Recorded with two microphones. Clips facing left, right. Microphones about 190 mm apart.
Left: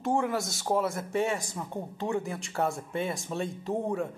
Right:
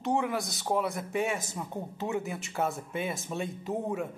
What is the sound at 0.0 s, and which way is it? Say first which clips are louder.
Speech: left 1 dB; centre (ahead or behind).